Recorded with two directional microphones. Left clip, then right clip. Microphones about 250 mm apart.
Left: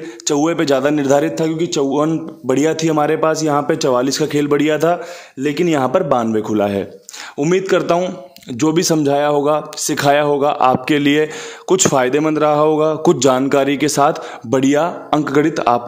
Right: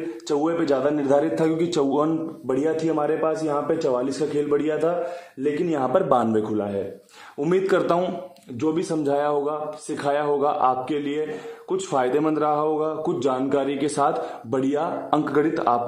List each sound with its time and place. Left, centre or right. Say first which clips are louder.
0.2 s a man's voice: left 7 dB; left
6.0 s a man's voice: left 4 dB; left
8.5 s a man's voice: left 9 dB; left